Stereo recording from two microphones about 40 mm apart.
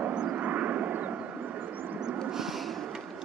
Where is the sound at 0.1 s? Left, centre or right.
Right.